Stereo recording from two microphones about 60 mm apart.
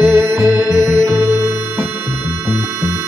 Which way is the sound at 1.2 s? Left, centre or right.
Right.